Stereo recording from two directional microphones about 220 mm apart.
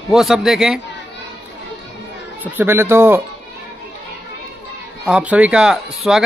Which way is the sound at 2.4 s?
10° right (ahead or behind).